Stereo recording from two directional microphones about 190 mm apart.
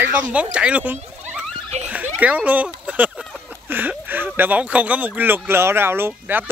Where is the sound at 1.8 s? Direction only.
10° right (ahead or behind).